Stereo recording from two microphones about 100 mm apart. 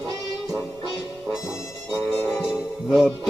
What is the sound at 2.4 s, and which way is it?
Music, 5° right (ahead or behind).